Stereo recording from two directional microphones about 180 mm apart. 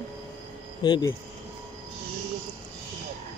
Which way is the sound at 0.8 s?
25° left (ahead or behind).